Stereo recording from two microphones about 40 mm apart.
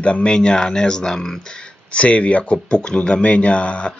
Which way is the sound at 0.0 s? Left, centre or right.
Left.